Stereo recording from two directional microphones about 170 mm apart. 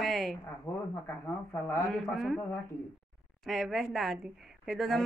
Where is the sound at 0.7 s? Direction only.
15° left (ahead or behind).